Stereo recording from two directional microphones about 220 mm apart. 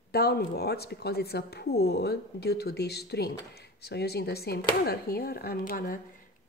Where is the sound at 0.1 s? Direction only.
45° left (ahead or behind).